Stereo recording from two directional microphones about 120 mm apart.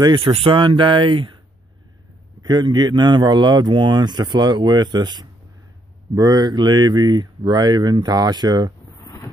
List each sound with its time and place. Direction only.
0.0 s speech: 50° right (ahead or behind)
2.4 s speech: 35° right (ahead or behind)
9.0 s vehicle: 30° left (ahead or behind)